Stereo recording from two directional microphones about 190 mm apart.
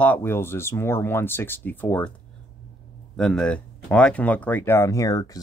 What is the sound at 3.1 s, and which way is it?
Speech, 5° left (ahead or behind).